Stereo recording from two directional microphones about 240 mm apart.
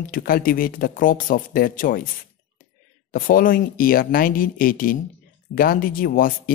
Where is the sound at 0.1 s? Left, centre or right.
Left.